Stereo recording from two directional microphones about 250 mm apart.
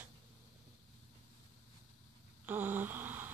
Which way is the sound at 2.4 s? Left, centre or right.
Centre.